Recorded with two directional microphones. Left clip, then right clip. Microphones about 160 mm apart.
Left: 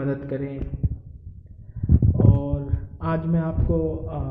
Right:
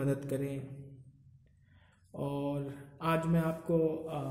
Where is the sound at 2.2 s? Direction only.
15° right (ahead or behind).